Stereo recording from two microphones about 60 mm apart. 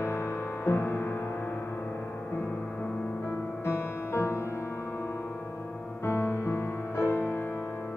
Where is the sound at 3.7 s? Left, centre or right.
Left.